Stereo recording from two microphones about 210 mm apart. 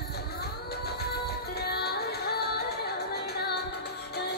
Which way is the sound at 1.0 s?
50° left (ahead or behind).